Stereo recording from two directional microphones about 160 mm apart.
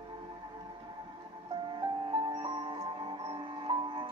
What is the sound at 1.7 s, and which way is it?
Music, 30° right (ahead or behind).